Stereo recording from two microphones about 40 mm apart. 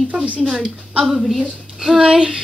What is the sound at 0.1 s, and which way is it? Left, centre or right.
Speech, right.